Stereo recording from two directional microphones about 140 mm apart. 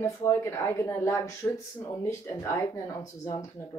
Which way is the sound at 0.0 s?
20° left (ahead or behind).